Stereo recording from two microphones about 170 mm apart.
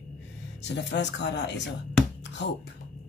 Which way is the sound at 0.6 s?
90° left.